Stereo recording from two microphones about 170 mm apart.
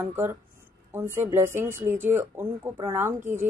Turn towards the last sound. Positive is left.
turn(degrees=-15)  # may be behind; listen again after turning